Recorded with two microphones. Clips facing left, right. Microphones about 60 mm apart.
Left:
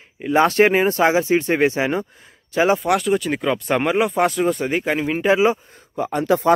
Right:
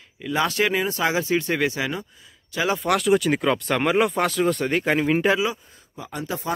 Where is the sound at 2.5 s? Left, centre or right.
Left.